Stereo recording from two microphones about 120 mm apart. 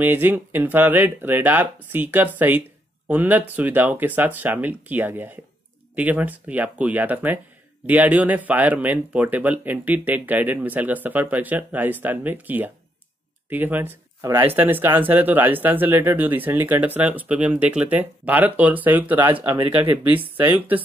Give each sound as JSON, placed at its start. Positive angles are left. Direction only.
{"t": 0.0, "sound": "speech", "side_deg": -15}